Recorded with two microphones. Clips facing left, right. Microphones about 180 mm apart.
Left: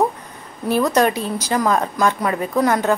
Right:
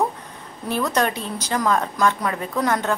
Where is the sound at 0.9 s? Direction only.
10° left (ahead or behind).